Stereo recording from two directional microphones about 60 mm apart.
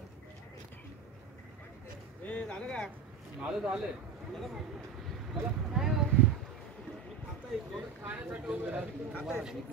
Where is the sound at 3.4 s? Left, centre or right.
Centre.